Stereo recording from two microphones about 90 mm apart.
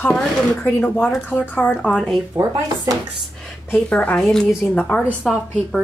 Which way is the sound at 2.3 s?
40° right (ahead or behind).